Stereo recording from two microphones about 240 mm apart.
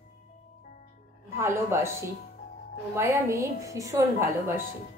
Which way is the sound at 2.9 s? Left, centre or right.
Centre.